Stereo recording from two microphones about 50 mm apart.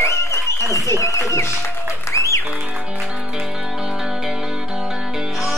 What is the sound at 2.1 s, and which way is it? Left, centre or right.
Music, left.